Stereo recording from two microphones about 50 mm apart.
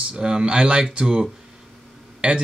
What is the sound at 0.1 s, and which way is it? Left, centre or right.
Speech, centre.